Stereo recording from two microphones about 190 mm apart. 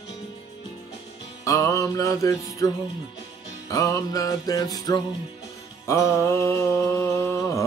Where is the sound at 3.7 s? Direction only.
15° left (ahead or behind).